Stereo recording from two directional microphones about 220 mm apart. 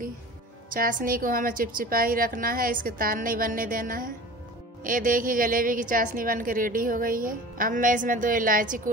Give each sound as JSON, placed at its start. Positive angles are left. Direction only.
{"t": 0.7, "sound": "a woman's voice", "side_deg": -40}